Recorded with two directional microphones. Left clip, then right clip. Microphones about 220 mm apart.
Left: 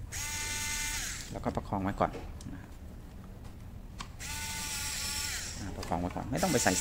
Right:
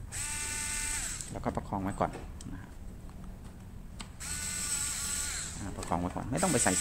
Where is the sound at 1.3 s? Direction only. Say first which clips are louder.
Even; 5° left (ahead or behind).